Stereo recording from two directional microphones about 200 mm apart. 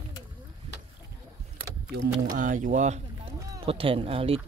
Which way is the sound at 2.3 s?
40° right (ahead or behind).